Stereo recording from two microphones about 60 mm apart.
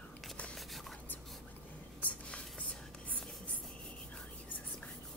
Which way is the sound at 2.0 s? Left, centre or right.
Left.